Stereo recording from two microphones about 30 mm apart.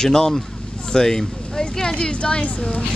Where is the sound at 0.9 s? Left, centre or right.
Left.